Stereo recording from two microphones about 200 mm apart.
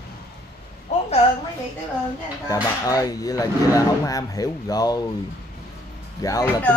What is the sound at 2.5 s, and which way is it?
Speech, 15° left (ahead or behind).